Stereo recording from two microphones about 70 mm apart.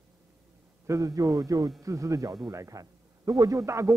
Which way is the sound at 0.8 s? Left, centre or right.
Right.